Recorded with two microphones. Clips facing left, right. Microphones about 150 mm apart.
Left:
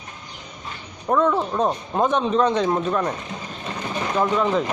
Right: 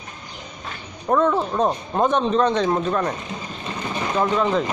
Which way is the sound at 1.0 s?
5° right (ahead or behind).